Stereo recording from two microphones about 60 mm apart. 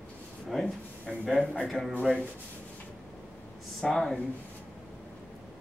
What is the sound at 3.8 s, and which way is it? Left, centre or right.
Speech, centre.